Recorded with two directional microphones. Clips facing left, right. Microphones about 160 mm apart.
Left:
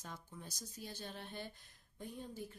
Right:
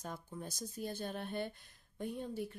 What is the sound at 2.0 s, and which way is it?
Speech, 70° right (ahead or behind).